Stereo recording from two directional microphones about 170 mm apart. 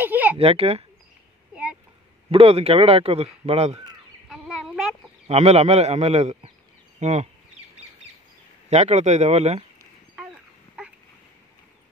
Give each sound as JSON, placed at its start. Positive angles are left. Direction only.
{"t": 0.0, "sound": "a sound", "side_deg": -10}
{"t": 0.4, "sound": "a man's voice", "side_deg": -35}
{"t": 1.5, "sound": "a sound", "side_deg": -5}
{"t": 2.3, "sound": "a man's voice", "side_deg": -35}
{"t": 4.3, "sound": "chicken", "side_deg": -5}
{"t": 5.3, "sound": "a man's voice", "side_deg": -40}
{"t": 8.6, "sound": "a man's voice", "side_deg": -40}